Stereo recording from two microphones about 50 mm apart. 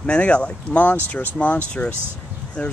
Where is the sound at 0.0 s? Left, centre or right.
Left.